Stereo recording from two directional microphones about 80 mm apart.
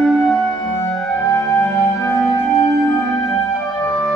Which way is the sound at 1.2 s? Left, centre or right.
Left.